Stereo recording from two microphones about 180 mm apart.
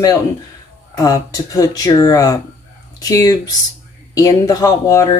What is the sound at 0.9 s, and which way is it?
Speech, 20° left (ahead or behind).